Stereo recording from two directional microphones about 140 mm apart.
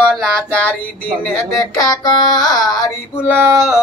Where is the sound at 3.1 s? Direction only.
15° left (ahead or behind).